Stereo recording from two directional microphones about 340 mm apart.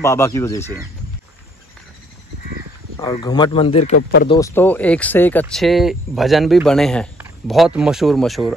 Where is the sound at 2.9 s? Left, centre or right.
Centre; by 4.2 s left.